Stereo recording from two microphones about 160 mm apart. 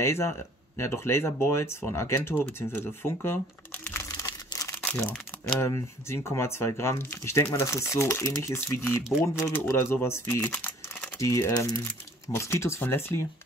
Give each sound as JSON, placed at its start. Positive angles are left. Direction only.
{"t": 0.0, "sound": "speech", "side_deg": 15}
{"t": 3.8, "sound": "crumpling", "side_deg": 15}
{"t": 4.8, "sound": "speech", "side_deg": 10}